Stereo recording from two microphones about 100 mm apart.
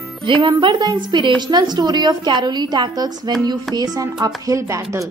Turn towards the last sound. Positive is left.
turn(degrees=-30)  # may be behind; listen again after turning